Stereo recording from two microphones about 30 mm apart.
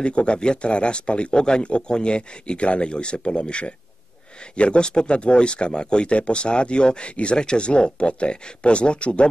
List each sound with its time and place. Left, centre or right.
0.0 s speech: left
1.3 s a man's voice: left